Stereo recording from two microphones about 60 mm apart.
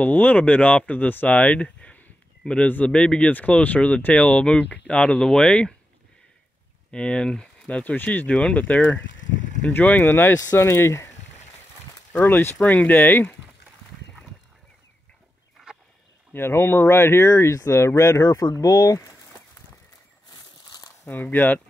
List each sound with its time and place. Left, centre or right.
0.0 s speech: left
6.9 s speech: centre
8.3 s speech: centre
10.0 s speech: left
10.3 s speech: left
10.6 s speech: left
12.1 s speech: left
15.7 s a sound: centre
16.3 s speech: left
18.2 s speech: left
21.1 s speech: left